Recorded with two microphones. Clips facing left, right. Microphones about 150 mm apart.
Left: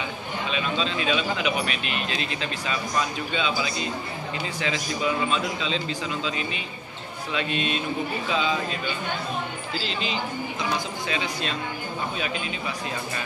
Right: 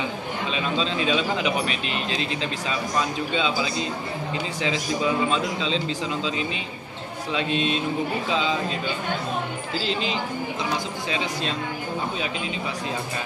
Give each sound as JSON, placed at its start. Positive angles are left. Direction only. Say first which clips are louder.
{"t": 0.5, "sound": "speech", "louder": "right 1 dB", "side_deg": -30}
{"t": 5.3, "sound": "speech", "louder": "right 2 dB", "side_deg": -25}
{"t": 7.3, "sound": "speech", "louder": "right 3 dB", "side_deg": -25}